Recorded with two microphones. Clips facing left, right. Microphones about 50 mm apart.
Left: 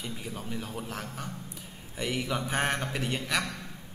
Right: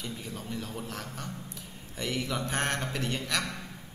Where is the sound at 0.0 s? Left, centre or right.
Centre.